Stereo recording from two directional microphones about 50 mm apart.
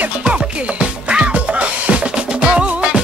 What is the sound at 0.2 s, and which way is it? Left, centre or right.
Music, right.